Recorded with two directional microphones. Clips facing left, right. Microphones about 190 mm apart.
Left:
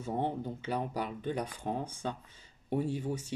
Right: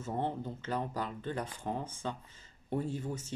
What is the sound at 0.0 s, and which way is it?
Speech, 15° left (ahead or behind).